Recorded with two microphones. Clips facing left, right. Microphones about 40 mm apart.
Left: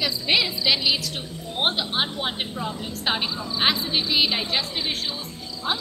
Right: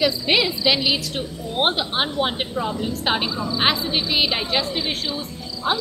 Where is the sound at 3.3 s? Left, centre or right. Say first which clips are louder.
Right 5 dB; right.